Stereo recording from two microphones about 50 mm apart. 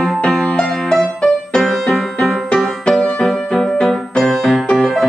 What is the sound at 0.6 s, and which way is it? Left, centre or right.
Music, centre.